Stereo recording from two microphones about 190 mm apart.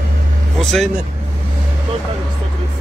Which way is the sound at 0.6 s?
Centre (ahead or behind).